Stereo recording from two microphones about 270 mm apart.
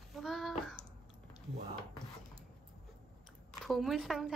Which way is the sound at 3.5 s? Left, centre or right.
Centre.